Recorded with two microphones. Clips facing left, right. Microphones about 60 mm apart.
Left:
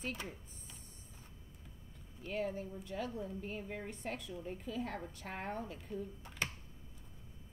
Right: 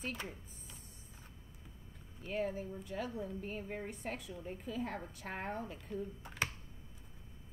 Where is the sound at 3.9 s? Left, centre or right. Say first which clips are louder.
Even; centre.